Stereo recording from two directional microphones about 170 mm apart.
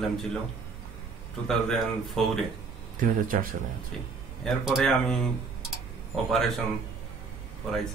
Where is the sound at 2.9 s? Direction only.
55° right (ahead or behind).